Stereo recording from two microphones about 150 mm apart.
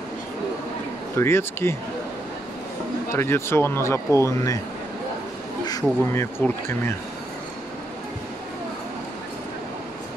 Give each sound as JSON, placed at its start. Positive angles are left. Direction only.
{"t": 1.1, "sound": "speech", "side_deg": 15}
{"t": 3.1, "sound": "speech", "side_deg": 15}
{"t": 5.7, "sound": "speech", "side_deg": 20}